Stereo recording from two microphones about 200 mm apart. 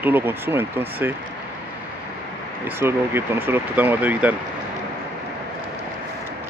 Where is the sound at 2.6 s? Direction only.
10° right (ahead or behind).